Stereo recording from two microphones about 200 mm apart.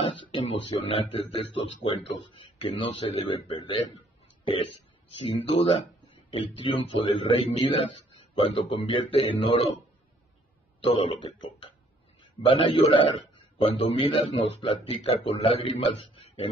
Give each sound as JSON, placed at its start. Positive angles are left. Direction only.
{"t": 0.0, "sound": "a sound", "side_deg": 25}
{"t": 0.7, "sound": "speech", "side_deg": 30}
{"t": 5.1, "sound": "speech", "side_deg": 30}
{"t": 10.8, "sound": "speech", "side_deg": 30}